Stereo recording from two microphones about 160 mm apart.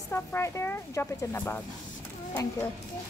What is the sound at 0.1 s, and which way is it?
Speech, 15° left (ahead or behind).